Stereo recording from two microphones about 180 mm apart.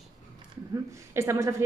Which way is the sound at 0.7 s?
15° right (ahead or behind).